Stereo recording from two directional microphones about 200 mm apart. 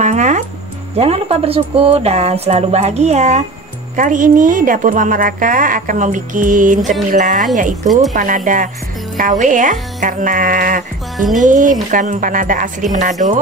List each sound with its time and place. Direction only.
0.0 s music: 35° right (ahead or behind)
0.9 s a woman's voice: 30° right (ahead or behind)